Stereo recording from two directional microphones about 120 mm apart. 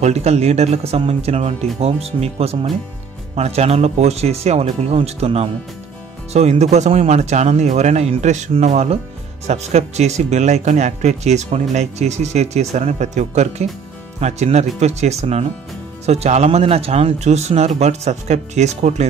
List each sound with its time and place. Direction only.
0.0 s speech: 65° right (ahead or behind)